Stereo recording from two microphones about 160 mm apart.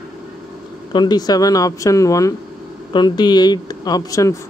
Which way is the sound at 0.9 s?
25° left (ahead or behind).